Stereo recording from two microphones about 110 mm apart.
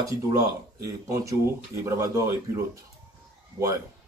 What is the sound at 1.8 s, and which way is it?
Speech, 25° right (ahead or behind).